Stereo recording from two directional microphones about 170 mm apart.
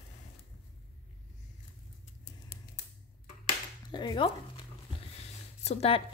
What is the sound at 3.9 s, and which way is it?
Speech, 25° left (ahead or behind).